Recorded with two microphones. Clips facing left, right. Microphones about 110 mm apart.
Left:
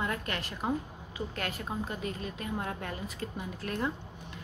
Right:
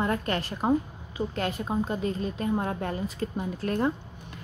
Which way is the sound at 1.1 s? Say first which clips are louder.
Right 7 dB; 25° right (ahead or behind).